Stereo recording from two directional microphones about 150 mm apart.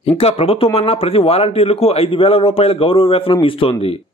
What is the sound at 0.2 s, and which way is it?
A man's voice, 40° left (ahead or behind).